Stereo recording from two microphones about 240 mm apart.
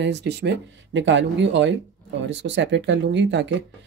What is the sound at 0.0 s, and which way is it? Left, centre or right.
Speech, right.